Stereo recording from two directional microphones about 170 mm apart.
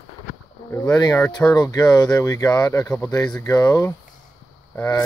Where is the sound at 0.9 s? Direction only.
25° left (ahead or behind).